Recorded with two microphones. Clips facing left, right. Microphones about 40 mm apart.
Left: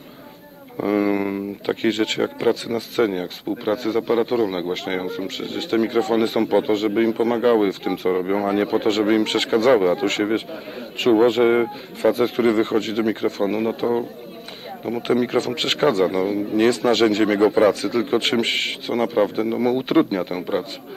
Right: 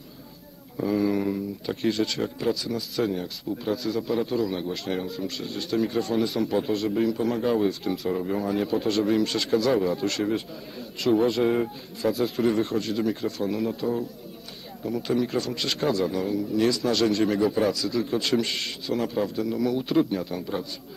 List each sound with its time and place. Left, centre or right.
0.7 s speech: left